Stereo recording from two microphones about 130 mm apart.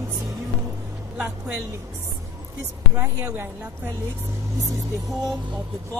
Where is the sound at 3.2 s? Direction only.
20° right (ahead or behind).